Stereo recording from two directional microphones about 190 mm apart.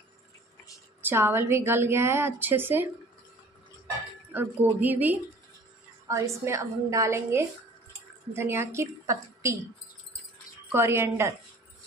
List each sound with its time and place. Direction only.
1.0 s a woman's voice: 10° right (ahead or behind)
4.3 s a woman's voice: 10° right (ahead or behind)
10.7 s a woman's voice: 15° right (ahead or behind)